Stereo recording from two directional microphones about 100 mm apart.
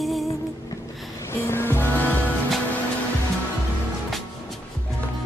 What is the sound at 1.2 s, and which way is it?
Music, 25° left (ahead or behind).